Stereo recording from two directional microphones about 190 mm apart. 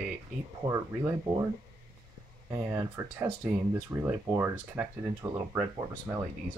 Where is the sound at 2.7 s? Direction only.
10° right (ahead or behind).